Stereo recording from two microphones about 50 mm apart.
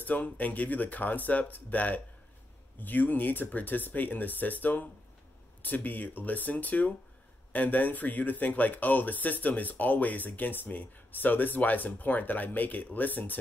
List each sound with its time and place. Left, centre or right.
0.0 s speech: left